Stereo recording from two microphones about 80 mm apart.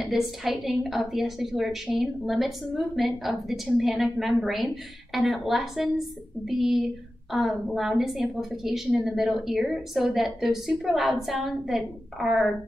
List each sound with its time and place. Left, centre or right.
0.0 s a woman's voice: centre